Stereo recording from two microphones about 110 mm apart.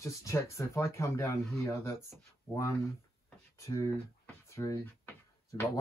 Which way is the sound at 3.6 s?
30° left (ahead or behind).